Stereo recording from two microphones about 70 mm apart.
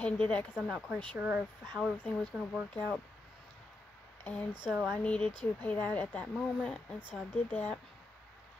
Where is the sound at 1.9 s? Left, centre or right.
Left.